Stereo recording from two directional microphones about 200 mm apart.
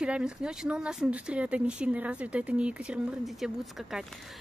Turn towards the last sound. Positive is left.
turn(degrees=0)  # may be behind; listen again after turning